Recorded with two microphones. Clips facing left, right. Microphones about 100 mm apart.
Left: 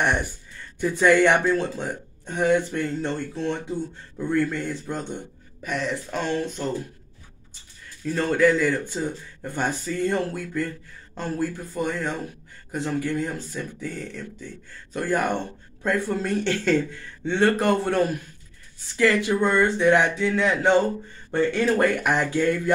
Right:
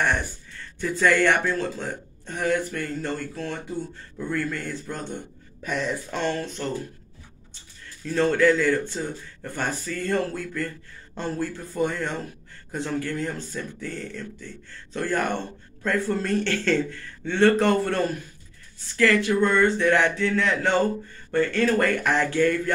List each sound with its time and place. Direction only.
0.0 s speech: 20° left (ahead or behind)
5.6 s speech: centre (ahead or behind)
6.3 s speech: 15° left (ahead or behind)
8.0 s speech: 10° left (ahead or behind)